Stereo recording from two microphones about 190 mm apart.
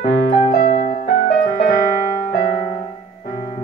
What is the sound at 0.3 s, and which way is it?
Keyboard, 40° left (ahead or behind).